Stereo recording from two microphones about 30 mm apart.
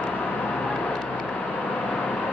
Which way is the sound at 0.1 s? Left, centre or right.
Left.